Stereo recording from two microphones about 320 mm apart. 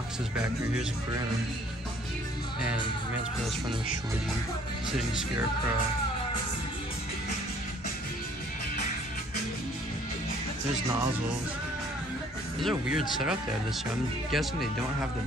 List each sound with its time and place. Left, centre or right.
12.5 s speech: centre
14.3 s speech: centre